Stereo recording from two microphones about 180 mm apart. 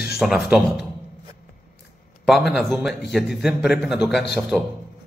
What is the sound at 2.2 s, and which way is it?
A man's voice, centre (ahead or behind).